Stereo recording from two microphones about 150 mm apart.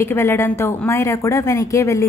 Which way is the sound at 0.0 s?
15° left (ahead or behind).